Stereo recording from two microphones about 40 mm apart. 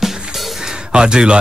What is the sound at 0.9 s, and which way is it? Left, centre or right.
Speech, centre.